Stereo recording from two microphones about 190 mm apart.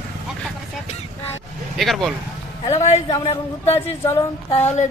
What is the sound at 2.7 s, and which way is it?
Speech, 35° left (ahead or behind).